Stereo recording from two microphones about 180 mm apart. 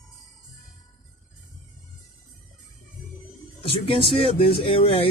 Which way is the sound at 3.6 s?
30° left (ahead or behind).